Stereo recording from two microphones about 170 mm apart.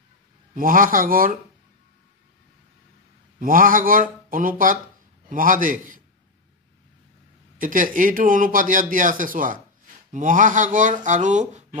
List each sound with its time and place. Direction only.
0.6 s speech: 55° right (ahead or behind)
3.3 s a man's voice: 55° right (ahead or behind)
7.5 s a man's voice: 50° right (ahead or behind)